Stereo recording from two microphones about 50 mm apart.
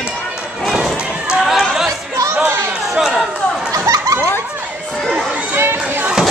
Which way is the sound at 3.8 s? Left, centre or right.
Right.